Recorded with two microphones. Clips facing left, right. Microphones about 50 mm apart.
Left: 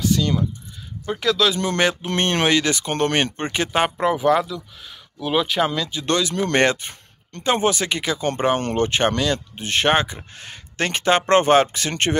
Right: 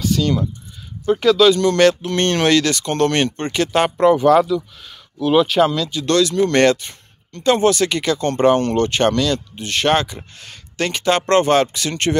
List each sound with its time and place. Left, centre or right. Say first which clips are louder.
0.0 s keys jangling: right 2 dB; centre
1.2 s speech: right 6 dB; centre
1.6 s speech: right 7 dB; centre
5.7 s speech: right 4 dB; centre